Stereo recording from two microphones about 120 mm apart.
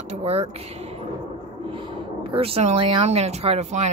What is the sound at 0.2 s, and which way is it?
Speech, 60° right (ahead or behind).